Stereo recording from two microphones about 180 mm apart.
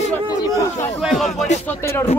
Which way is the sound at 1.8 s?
15° left (ahead or behind).